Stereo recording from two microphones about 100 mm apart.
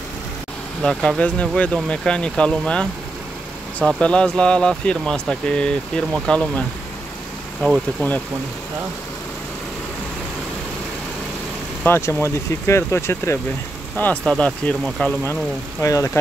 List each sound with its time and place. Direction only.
0.8 s speech: 10° left (ahead or behind)
11.8 s speech: 25° left (ahead or behind)
13.9 s speech: 15° left (ahead or behind)
15.8 s speech: 35° left (ahead or behind)